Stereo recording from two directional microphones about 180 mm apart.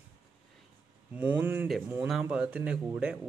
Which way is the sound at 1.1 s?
10° right (ahead or behind).